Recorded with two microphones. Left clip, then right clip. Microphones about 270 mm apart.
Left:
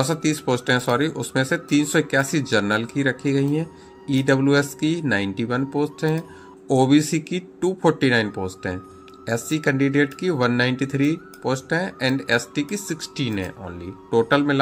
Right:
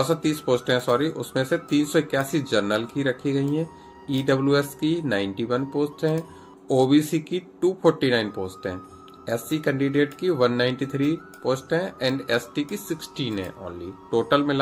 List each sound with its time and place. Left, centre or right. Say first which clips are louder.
0.0 s speech: left 1 dB; left